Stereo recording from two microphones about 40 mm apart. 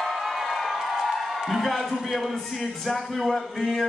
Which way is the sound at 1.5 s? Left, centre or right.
Centre.